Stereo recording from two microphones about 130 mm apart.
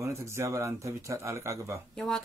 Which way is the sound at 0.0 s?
20° right (ahead or behind).